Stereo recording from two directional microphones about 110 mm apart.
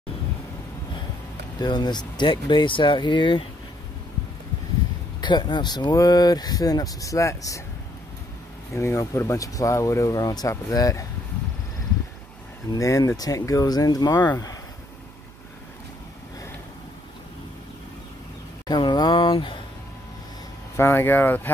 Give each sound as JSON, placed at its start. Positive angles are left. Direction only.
{"t": 1.6, "sound": "speech", "side_deg": 40}
{"t": 5.2, "sound": "speech", "side_deg": 40}
{"t": 8.7, "sound": "speech", "side_deg": 25}
{"t": 12.7, "sound": "speech", "side_deg": 30}
{"t": 18.7, "sound": "speech", "side_deg": 40}
{"t": 20.7, "sound": "speech", "side_deg": 20}